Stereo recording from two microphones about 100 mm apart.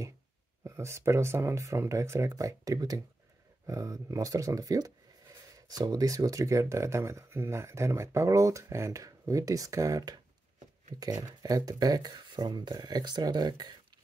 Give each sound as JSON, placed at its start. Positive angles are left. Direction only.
{"t": 0.7, "sound": "speech", "side_deg": -30}